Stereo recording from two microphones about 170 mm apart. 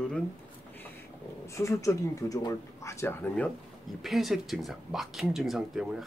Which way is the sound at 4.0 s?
Centre (ahead or behind).